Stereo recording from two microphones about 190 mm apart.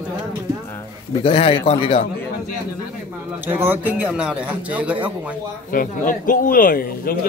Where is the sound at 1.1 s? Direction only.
30° left (ahead or behind).